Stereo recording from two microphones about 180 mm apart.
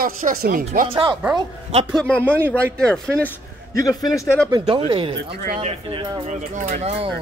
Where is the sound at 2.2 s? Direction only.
10° right (ahead or behind).